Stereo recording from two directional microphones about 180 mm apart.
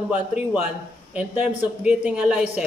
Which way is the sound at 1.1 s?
5° right (ahead or behind).